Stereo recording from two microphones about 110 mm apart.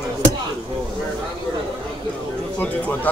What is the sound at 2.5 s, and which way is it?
Speech, 15° left (ahead or behind).